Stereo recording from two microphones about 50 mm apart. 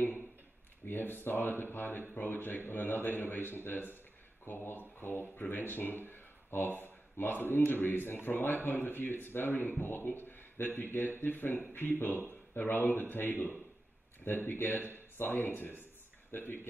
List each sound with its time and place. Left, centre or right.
0.8 s speech: left